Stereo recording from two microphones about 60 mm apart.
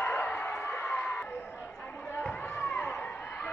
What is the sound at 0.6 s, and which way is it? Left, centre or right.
Crowd, left.